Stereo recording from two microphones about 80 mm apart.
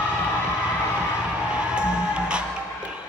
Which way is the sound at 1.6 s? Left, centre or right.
Centre.